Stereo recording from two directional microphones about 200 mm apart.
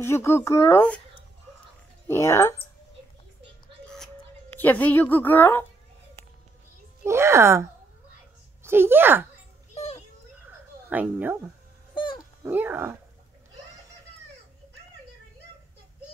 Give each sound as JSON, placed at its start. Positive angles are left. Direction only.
{"t": 0.0, "sound": "a woman's voice", "side_deg": 10}
{"t": 2.0, "sound": "a woman's voice", "side_deg": 15}
{"t": 4.6, "sound": "a woman's voice", "side_deg": 10}
{"t": 7.1, "sound": "speech", "side_deg": -15}
{"t": 8.6, "sound": "speech", "side_deg": -10}
{"t": 9.8, "sound": "a sound", "side_deg": 30}
{"t": 10.9, "sound": "speech", "side_deg": -10}
{"t": 11.9, "sound": "dog", "side_deg": 25}
{"t": 12.4, "sound": "speech", "side_deg": -10}